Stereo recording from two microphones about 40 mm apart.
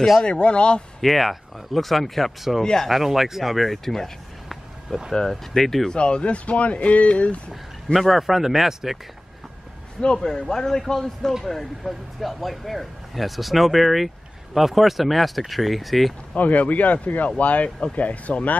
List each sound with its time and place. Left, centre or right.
0.3 s speech: left
1.0 s speech: centre
2.6 s a man's voice: centre
2.9 s speech: centre
3.7 s a sound: centre
5.1 s a man's voice: centre
5.9 s speech: left
7.9 s speech: centre
10.0 s a man's voice: centre
16.3 s speech: left